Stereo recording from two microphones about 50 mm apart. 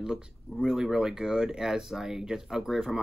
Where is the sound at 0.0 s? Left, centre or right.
Centre.